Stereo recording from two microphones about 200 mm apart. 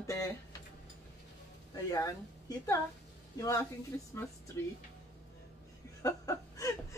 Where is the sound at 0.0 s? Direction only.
15° left (ahead or behind).